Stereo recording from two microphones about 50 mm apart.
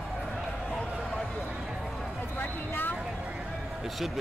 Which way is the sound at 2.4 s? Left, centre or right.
Left.